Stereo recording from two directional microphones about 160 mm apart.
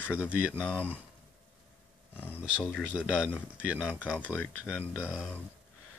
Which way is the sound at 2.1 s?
10° left (ahead or behind).